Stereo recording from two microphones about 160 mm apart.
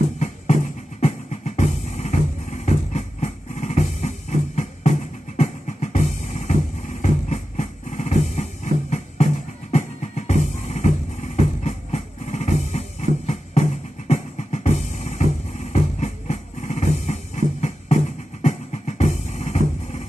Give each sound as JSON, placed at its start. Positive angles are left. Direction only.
{"t": 1.0, "sound": "music", "side_deg": 45}